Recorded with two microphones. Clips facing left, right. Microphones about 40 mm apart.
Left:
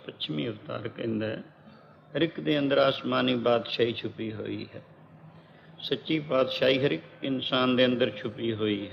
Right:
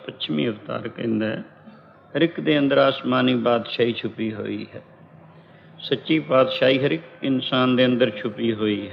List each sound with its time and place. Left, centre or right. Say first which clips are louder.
0.0 s a man's voice: right 8 dB; right